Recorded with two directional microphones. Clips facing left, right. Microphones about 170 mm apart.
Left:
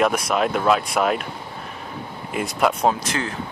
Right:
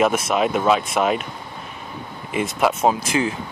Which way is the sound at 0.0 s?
5° right (ahead or behind).